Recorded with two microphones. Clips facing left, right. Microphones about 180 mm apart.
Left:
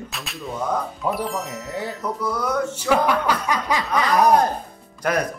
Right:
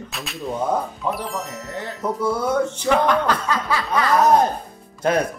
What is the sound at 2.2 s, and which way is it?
Speech, 25° right (ahead or behind).